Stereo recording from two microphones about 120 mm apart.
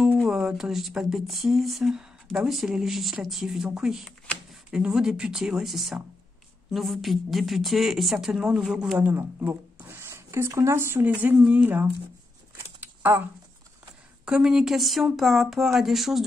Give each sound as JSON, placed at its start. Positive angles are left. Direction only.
{"t": 0.2, "sound": "speech", "side_deg": -5}
{"t": 9.0, "sound": "speech", "side_deg": -15}
{"t": 12.8, "sound": "a sound", "side_deg": -15}
{"t": 14.2, "sound": "speech", "side_deg": -5}